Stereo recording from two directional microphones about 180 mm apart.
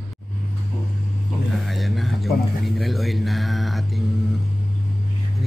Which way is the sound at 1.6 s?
Centre (ahead or behind).